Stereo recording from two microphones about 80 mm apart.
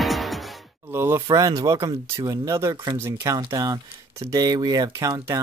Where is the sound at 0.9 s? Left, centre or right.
Right.